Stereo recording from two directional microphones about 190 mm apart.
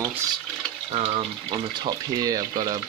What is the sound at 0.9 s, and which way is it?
Speech, 35° right (ahead or behind).